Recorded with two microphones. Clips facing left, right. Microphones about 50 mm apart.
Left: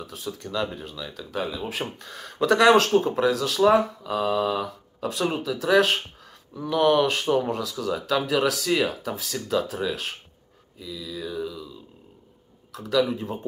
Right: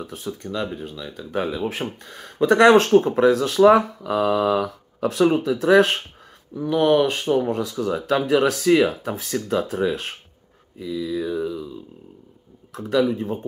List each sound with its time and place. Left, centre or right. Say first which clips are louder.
0.0 s speech: right 4 dB; right
0.3 s speech: right 1 dB; right
1.2 s speech: right 5 dB; right
2.0 s speech: right 4 dB; centre
2.5 s speech: right 4 dB; right
3.7 s speech: right 3 dB; right
6.5 s speech: right 2 dB; centre
7.8 s speech: right 3 dB; right
12.7 s speech: right 3 dB; right